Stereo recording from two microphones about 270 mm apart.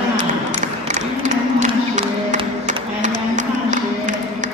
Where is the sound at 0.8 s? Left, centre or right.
Right.